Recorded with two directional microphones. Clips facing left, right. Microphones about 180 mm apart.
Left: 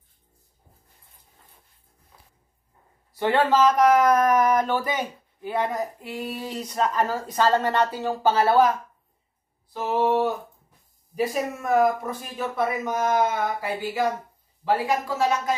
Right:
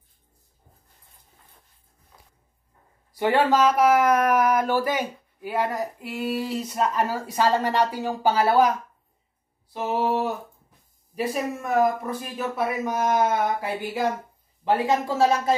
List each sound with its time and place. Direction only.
3.1 s speech: 15° right (ahead or behind)
14.6 s speech: 25° right (ahead or behind)